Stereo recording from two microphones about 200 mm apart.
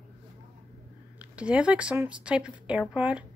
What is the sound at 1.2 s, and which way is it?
Speech, 5° right (ahead or behind).